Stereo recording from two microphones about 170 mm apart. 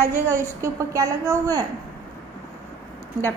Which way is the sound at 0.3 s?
15° right (ahead or behind).